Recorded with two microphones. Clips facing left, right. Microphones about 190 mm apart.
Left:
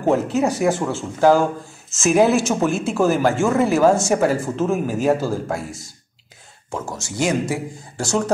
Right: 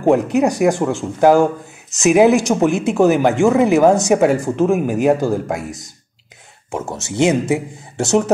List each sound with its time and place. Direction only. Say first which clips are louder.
0.0 s speech: right 4 dB; 15° right (ahead or behind)